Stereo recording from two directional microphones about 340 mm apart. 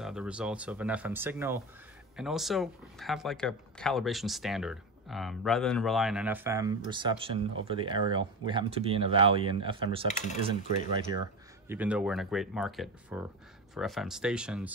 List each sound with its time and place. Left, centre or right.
0.0 s speech: centre
10.0 s speech: left
11.7 s speech: centre